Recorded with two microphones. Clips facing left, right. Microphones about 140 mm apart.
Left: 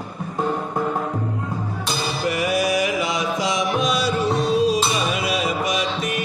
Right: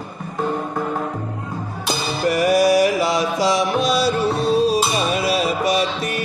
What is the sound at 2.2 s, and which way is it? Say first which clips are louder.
Mantra: right 6 dB; 40° right (ahead or behind).